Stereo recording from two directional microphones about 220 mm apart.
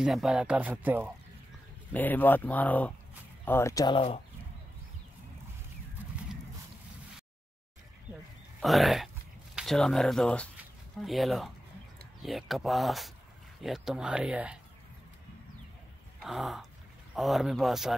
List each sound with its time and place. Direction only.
0.0 s speech: centre (ahead or behind)
1.9 s speech: 10° left (ahead or behind); by 4.2 s 25° left (ahead or behind)
8.5 s speech: centre (ahead or behind)
16.2 s a sound: centre (ahead or behind)
17.1 s speech: centre (ahead or behind)